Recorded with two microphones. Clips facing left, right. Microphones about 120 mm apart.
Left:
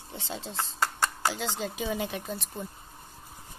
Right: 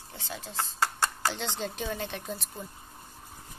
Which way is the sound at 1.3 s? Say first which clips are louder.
Left 1 dB; 5° left (ahead or behind).